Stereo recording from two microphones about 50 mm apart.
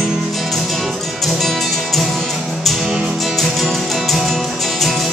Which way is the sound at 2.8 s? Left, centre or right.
Centre.